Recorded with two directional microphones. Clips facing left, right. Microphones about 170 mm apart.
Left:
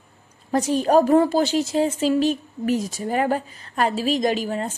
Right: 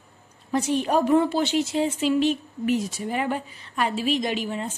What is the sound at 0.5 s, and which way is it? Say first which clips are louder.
A woman's voice: left 4 dB; 40° left (ahead or behind).